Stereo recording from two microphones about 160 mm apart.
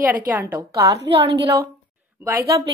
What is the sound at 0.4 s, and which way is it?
Speech, 15° right (ahead or behind).